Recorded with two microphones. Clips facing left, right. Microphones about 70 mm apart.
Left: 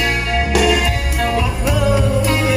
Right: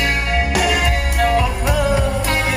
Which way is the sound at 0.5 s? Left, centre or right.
Right.